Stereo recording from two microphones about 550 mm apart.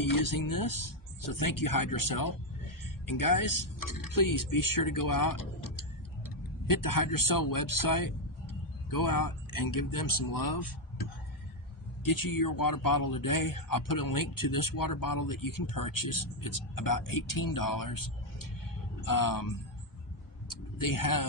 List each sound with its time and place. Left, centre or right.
0.0 s speech: left
6.7 s speech: left
12.0 s speech: left
20.4 s a sound: left